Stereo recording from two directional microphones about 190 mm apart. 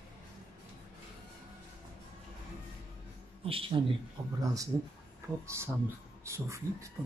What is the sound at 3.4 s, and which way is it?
Speech, 30° right (ahead or behind).